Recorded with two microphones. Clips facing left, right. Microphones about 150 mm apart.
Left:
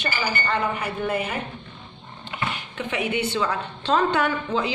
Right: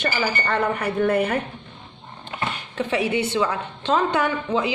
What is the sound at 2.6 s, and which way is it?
Speech, 35° right (ahead or behind).